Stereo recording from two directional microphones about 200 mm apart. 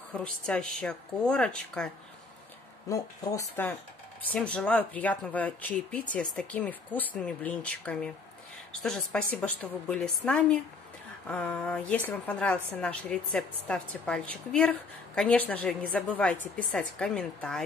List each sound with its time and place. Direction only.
0.1 s a woman's voice: 5° left (ahead or behind)
2.9 s a woman's voice: 15° left (ahead or behind)